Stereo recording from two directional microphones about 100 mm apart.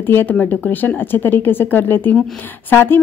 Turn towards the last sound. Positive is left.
turn(degrees=20)  # may be behind; listen again after turning